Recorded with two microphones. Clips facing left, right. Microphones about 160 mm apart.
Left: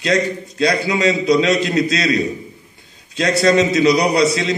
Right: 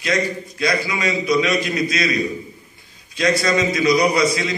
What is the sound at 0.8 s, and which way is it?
A man's voice, 65° left (ahead or behind).